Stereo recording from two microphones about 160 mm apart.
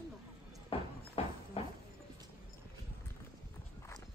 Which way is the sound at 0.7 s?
35° left (ahead or behind).